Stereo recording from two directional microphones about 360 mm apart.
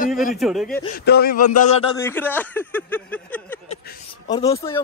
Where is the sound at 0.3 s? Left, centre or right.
Centre.